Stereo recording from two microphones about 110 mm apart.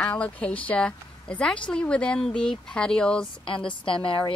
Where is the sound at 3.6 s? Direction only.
50° left (ahead or behind).